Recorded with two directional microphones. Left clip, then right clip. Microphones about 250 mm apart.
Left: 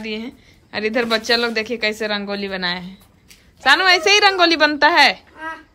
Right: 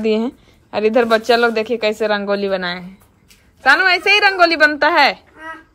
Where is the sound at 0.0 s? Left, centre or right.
Centre.